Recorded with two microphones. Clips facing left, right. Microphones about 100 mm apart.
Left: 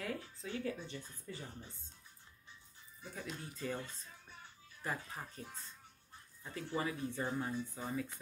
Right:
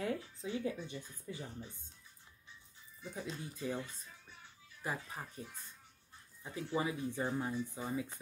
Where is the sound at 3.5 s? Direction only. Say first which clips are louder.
Right 1 dB; 15° right (ahead or behind).